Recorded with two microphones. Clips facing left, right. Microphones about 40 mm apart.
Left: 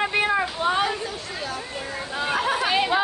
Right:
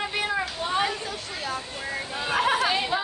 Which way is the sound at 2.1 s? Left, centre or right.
Centre.